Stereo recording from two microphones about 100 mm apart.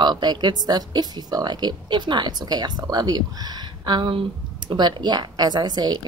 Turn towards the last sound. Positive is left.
turn(degrees=-45)  # may be behind; listen again after turning